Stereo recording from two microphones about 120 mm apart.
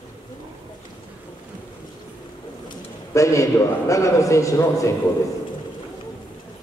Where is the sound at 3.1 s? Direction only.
25° left (ahead or behind).